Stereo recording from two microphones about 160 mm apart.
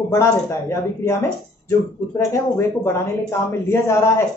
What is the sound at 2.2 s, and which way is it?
Speech, 20° left (ahead or behind).